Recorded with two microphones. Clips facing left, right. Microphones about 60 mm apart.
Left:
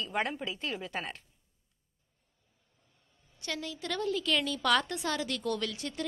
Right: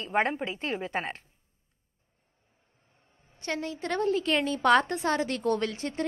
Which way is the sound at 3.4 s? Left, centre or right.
Right.